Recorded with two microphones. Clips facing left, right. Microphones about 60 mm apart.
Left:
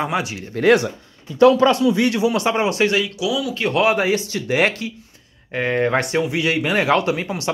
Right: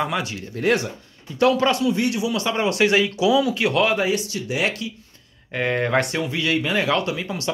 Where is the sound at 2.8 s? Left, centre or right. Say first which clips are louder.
Right 4 dB; centre.